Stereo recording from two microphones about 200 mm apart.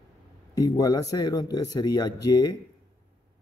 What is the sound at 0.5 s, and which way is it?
Speech, 20° left (ahead or behind).